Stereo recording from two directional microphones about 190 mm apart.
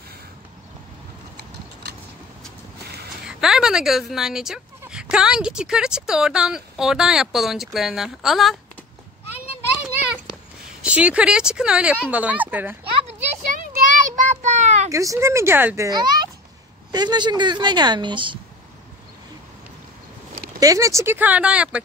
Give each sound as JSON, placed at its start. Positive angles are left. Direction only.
{"t": 1.3, "sound": "a sound", "side_deg": -60}
{"t": 3.3, "sound": "speech", "side_deg": -5}
{"t": 10.8, "sound": "speech", "side_deg": -5}
{"t": 13.0, "sound": "child singing", "side_deg": -45}
{"t": 14.9, "sound": "a woman's voice", "side_deg": -15}
{"t": 20.5, "sound": "speech", "side_deg": -20}